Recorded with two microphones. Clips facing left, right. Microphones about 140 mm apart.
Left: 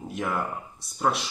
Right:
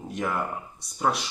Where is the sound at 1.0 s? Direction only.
Centre (ahead or behind).